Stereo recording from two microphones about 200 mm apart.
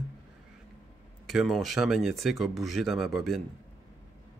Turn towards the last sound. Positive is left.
turn(degrees=0)  # may be behind; listen again after turning